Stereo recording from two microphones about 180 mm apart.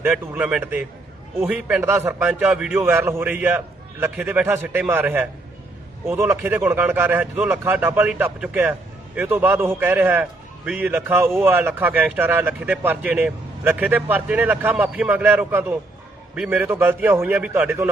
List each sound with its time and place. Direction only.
0.0 s a man's voice: 10° right (ahead or behind)